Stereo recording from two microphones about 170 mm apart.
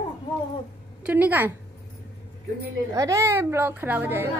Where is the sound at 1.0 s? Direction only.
10° right (ahead or behind).